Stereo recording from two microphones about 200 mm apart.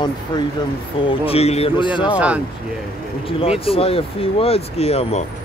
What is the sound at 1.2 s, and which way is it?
Speech, 30° left (ahead or behind).